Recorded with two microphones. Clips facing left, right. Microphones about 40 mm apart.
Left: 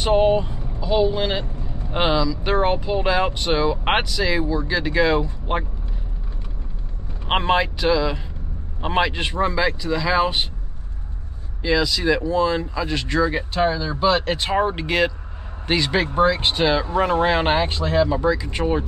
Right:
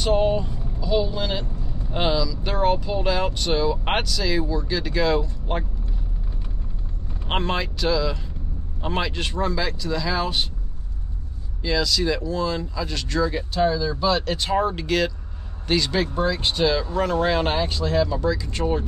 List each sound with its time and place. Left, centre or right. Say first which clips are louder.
0.0 s speech: left 3 dB; left
7.2 s speech: left 6 dB; left
11.6 s speech: left 3 dB; centre